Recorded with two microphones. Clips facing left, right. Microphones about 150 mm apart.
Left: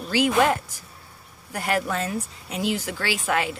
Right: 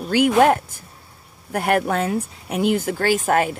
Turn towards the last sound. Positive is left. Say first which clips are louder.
# right 7 dB
turn(degrees=-50)  # may be behind; listen again after turning